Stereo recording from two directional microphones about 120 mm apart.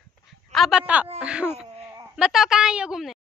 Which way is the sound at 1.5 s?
60° right (ahead or behind).